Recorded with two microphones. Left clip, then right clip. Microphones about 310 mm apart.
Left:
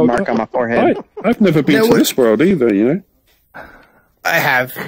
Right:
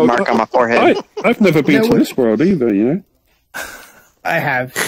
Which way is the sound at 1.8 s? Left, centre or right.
Centre.